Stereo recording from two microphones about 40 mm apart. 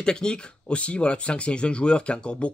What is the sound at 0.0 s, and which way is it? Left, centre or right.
Speech, left.